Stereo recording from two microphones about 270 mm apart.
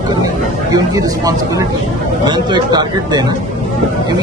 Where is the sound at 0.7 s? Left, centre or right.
Centre.